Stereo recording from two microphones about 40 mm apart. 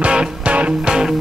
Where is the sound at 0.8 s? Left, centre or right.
Centre.